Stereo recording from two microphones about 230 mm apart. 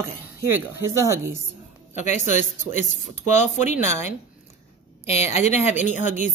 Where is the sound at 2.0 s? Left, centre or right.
Left.